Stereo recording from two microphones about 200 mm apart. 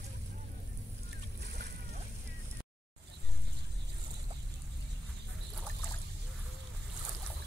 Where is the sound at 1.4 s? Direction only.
55° right (ahead or behind).